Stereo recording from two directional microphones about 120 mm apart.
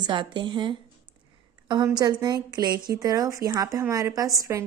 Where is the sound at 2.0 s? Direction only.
35° right (ahead or behind).